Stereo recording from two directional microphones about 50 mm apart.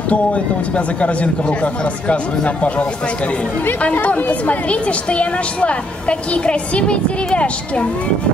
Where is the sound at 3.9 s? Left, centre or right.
Left.